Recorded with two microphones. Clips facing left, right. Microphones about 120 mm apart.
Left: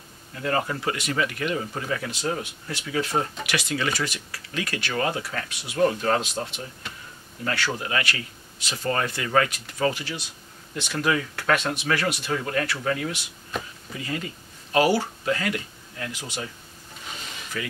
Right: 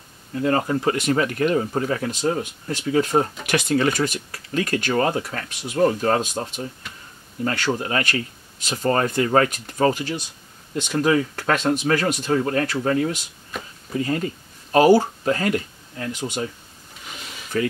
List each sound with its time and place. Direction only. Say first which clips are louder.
0.4 s speech: right 5 dB; 25° right (ahead or behind)
7.4 s speech: right 5 dB; 40° right (ahead or behind)
17.5 s speech: right 10 dB; 40° right (ahead or behind)